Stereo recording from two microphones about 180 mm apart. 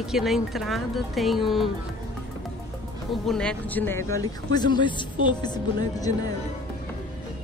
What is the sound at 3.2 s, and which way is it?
Speech, 5° left (ahead or behind).